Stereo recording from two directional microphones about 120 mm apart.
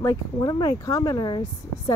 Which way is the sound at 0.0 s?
35° left (ahead or behind).